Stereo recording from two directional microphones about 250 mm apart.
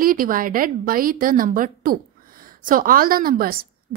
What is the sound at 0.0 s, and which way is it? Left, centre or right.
A woman's voice, right.